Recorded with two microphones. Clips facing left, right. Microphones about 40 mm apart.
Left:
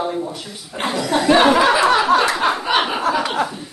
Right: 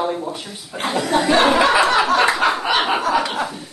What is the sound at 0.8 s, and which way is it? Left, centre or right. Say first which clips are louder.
Speech: left 1 dB; left.